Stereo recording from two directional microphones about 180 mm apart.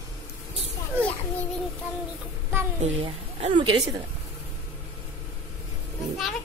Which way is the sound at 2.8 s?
35° right (ahead or behind).